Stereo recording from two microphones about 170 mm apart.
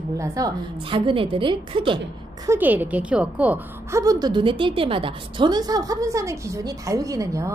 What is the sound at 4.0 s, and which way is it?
A woman's voice, 20° right (ahead or behind).